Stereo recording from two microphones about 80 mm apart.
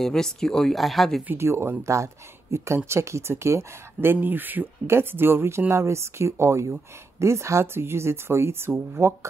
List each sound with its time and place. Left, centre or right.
0.0 s speech: centre
1.2 s speech: right